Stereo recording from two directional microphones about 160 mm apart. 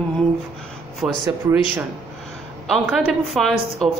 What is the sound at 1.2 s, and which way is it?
Speech, 15° right (ahead or behind).